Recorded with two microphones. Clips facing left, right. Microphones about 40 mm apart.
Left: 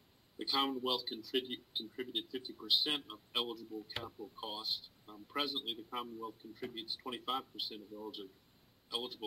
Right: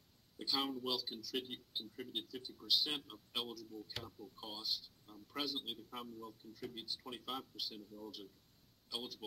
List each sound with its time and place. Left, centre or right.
0.7 s speech: left